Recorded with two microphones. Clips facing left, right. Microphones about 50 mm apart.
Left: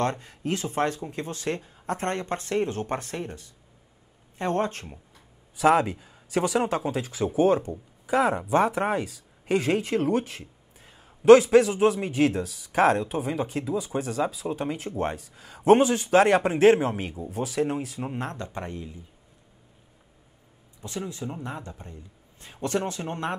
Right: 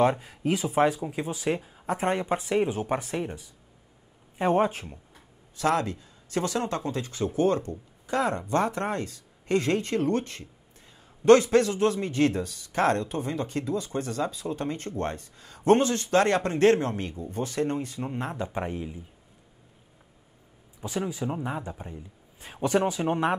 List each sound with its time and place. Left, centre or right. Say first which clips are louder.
0.0 s speech: right 4 dB; centre
5.6 s speech: left 5 dB; centre
18.3 s speech: right 3 dB; centre
20.8 s speech: right 3 dB; centre